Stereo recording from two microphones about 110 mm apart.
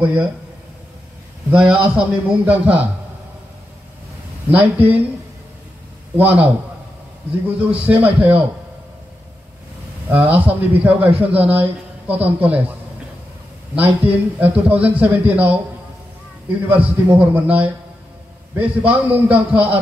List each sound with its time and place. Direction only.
0.0 s a man's voice: 15° right (ahead or behind)
1.5 s a man's voice: 10° right (ahead or behind)
4.5 s a man's voice: 15° right (ahead or behind)
6.1 s a man's voice: 10° right (ahead or behind)
10.0 s a man's voice: 15° right (ahead or behind)
13.7 s a man's voice: 15° right (ahead or behind)
16.6 s a man's voice: 15° right (ahead or behind)